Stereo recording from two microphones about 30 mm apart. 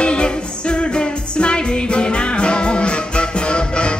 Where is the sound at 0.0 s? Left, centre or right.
Left.